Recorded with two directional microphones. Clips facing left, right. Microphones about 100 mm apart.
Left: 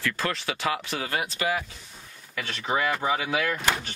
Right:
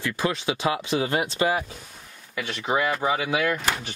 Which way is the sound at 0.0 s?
15° right (ahead or behind).